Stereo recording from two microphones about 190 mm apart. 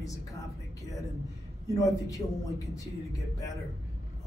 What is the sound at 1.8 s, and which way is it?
Speech, 15° left (ahead or behind).